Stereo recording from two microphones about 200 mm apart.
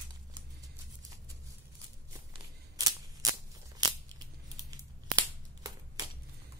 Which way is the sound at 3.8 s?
20° right (ahead or behind).